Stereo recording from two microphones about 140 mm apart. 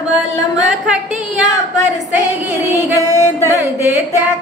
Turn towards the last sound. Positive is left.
turn(degrees=20)  # may be behind; listen again after turning